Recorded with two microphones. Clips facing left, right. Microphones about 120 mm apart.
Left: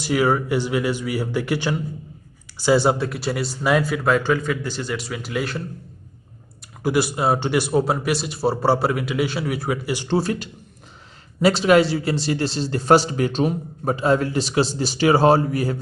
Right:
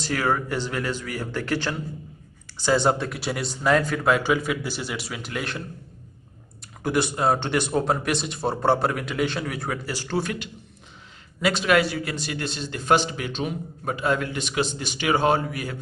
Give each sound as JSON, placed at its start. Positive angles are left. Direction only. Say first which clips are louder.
{"t": 0.0, "sound": "a man's voice", "louder": "left 5 dB", "side_deg": 10}
{"t": 6.8, "sound": "a man's voice", "louder": "left 3 dB", "side_deg": 5}
{"t": 10.0, "sound": "a man's voice", "louder": "left 5 dB", "side_deg": 30}